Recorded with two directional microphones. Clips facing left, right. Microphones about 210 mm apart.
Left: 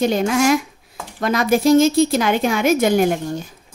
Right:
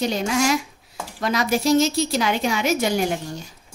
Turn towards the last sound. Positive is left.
turn(degrees=50)  # may be behind; listen again after turning